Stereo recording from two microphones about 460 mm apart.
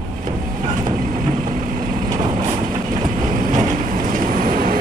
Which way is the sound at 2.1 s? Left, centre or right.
Centre.